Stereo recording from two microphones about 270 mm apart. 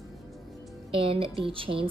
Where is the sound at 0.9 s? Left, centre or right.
Centre.